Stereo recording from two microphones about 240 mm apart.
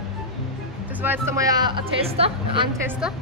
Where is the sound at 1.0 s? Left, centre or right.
Centre.